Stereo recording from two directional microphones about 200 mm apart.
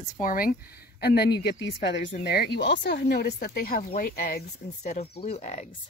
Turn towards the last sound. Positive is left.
turn(degrees=35)  # may be behind; listen again after turning